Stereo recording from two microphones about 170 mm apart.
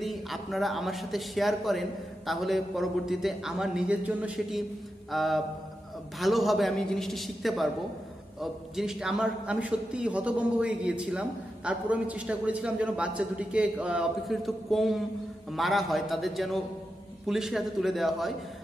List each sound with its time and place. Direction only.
0.0 s a man's voice: centre (ahead or behind)